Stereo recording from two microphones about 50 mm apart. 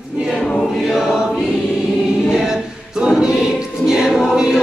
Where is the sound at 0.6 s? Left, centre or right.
Centre.